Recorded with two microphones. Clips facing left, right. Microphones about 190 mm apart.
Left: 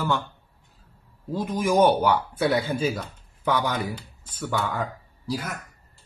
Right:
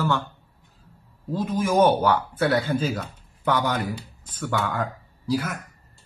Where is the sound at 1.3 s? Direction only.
15° left (ahead or behind).